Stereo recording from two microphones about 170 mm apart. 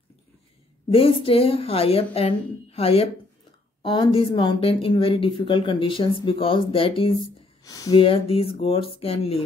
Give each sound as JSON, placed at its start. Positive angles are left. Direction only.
{"t": 0.8, "sound": "a woman's voice", "side_deg": 35}
{"t": 7.9, "sound": "speech", "side_deg": 35}